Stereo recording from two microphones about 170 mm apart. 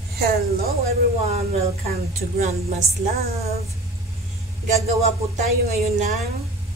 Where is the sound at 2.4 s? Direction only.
40° right (ahead or behind).